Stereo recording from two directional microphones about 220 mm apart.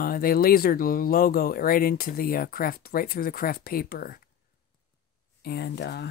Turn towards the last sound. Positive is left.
turn(degrees=50)  # may be behind; listen again after turning